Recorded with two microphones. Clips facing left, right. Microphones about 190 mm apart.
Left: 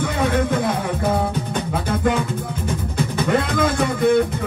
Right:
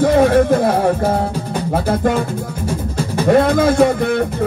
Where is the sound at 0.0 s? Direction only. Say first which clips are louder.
Right 9 dB; 50° right (ahead or behind).